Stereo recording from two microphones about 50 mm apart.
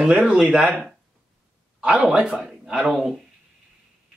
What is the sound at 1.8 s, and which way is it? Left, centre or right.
Speech, right.